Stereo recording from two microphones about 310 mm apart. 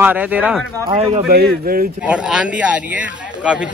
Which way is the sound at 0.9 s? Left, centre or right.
Centre.